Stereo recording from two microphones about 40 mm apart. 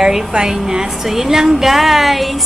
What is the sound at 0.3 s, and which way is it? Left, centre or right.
Speech, centre.